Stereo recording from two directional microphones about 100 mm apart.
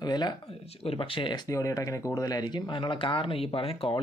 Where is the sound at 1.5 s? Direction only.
35° left (ahead or behind); by 3.9 s 70° left (ahead or behind).